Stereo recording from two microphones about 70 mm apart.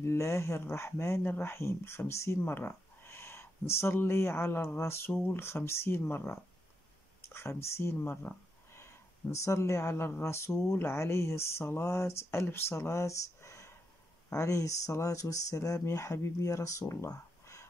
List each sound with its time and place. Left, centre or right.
0.0 s speech: left